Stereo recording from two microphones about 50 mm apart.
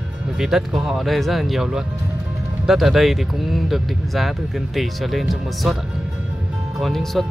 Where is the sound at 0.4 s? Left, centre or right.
Centre.